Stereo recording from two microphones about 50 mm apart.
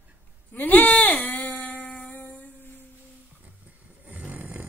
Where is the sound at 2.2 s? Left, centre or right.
Left.